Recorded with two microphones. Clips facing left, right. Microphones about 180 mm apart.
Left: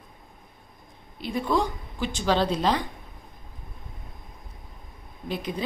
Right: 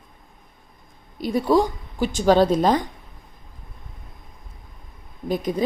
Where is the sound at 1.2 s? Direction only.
40° right (ahead or behind).